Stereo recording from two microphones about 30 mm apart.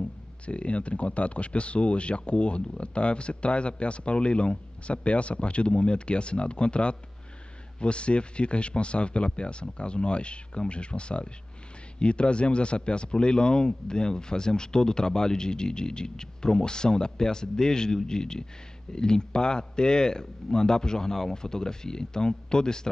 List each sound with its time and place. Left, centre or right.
0.5 s speech: left